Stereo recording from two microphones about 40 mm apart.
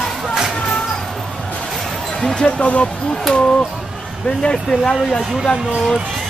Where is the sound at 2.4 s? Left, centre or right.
Left.